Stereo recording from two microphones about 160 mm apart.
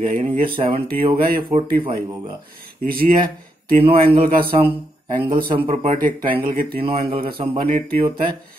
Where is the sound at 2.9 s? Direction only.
65° right (ahead or behind).